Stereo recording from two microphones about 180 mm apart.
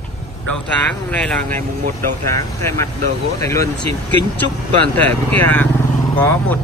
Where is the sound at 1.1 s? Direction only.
10° left (ahead or behind).